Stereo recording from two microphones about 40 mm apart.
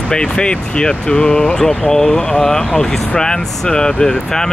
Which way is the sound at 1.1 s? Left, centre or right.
Left.